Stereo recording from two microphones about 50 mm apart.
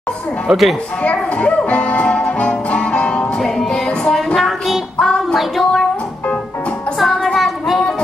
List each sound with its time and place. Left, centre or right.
0.5 s speech: centre
1.0 s speech: left
3.3 s music: centre
4.4 s a sound: centre
5.0 s child singing: centre
7.0 s music: centre
7.3 s a sound: centre